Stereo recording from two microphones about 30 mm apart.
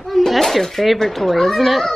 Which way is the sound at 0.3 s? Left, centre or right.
Centre.